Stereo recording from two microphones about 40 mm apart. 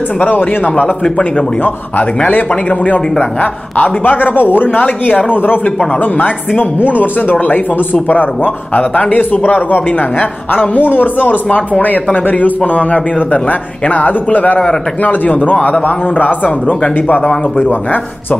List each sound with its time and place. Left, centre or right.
0.2 s speech: left
0.7 s a man's voice: left
2.1 s a man's voice: left